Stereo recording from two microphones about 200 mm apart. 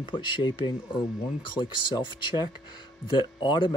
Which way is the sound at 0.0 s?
25° left (ahead or behind).